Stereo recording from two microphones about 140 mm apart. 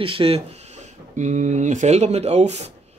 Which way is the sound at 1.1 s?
60° right (ahead or behind).